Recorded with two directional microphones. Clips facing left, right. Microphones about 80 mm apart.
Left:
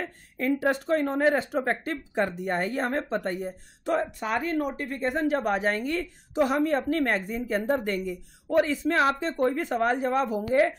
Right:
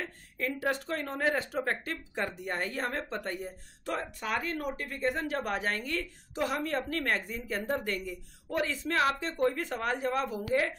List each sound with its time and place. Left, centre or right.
0.0 s speech: left
1.9 s speech: left